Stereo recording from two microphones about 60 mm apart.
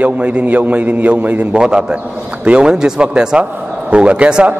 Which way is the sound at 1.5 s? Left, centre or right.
Centre.